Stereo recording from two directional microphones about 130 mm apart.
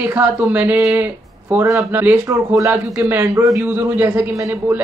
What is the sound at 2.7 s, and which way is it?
Speech, 15° right (ahead or behind).